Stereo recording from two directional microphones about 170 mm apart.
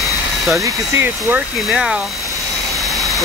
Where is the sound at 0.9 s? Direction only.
10° right (ahead or behind).